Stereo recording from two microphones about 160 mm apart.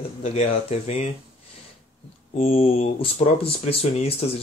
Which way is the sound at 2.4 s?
40° left (ahead or behind).